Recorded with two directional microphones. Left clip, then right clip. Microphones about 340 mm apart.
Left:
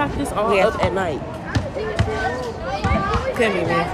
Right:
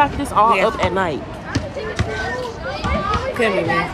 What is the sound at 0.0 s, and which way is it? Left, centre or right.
Speech, centre.